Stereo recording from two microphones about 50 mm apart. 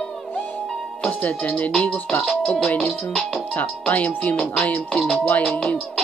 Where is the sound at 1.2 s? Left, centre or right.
Left.